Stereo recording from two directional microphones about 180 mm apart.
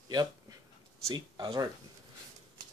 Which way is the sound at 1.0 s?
25° right (ahead or behind).